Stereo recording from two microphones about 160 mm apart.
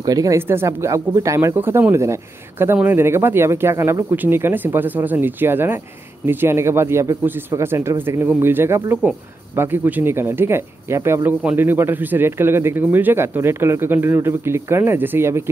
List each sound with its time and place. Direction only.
0.0 s speech: 20° right (ahead or behind)